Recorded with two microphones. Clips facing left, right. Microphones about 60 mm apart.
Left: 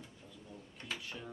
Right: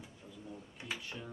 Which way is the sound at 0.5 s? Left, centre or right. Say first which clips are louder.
Right 1 dB; centre.